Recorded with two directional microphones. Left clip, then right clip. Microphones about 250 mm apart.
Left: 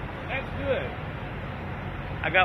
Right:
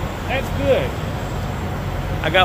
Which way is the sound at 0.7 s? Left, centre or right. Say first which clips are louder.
Right 10 dB; centre.